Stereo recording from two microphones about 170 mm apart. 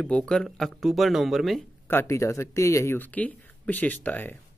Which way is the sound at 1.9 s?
15° left (ahead or behind).